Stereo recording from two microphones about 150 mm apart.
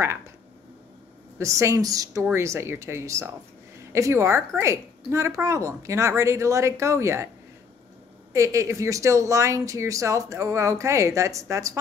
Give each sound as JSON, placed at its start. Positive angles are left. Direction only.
{"t": 1.4, "sound": "a woman's voice", "side_deg": -20}
{"t": 8.3, "sound": "speech", "side_deg": -20}